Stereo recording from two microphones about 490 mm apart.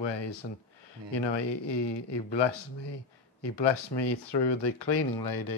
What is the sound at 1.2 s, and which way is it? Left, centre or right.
Speech, left.